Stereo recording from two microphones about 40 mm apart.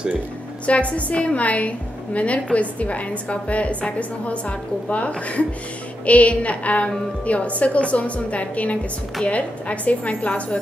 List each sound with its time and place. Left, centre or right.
0.7 s a woman's voice: left